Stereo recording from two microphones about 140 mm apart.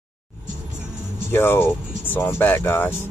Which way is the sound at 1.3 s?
15° left (ahead or behind).